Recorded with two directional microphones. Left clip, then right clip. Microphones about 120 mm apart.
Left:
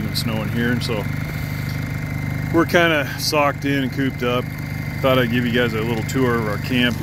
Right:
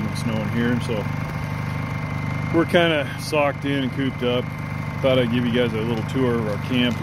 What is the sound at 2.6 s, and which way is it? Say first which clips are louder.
Speech: left 2 dB; 20° right (ahead or behind).